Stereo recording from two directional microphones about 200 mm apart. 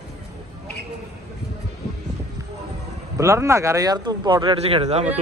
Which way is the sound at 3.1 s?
15° right (ahead or behind).